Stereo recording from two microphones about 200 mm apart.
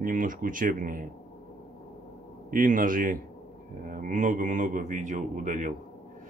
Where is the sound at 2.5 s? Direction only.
40° right (ahead or behind).